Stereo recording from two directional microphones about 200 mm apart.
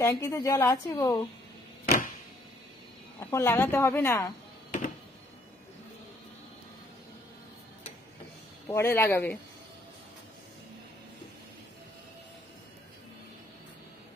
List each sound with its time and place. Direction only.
0.0 s speech: 15° left (ahead or behind)
3.2 s speech: 15° left (ahead or behind)
4.6 s a sound: 40° left (ahead or behind)
8.6 s speech: 10° left (ahead or behind)